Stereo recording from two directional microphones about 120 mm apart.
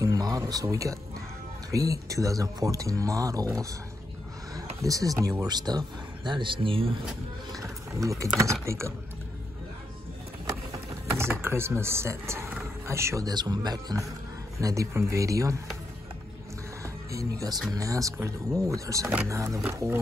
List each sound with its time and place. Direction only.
0.0 s speech: 30° right (ahead or behind)
4.6 s a sound: 30° right (ahead or behind)
5.2 s speech: 30° right (ahead or behind); by 7.0 s 50° right (ahead or behind)
7.5 s a sound: 25° right (ahead or behind)
8.6 s speech: 25° right (ahead or behind)
10.7 s a sound: 20° right (ahead or behind)
13.3 s speech: 35° right (ahead or behind)
16.8 s music: 30° right (ahead or behind)
17.7 s speech: 30° right (ahead or behind)